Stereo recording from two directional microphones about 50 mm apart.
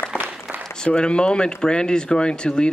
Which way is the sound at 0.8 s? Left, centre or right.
Centre.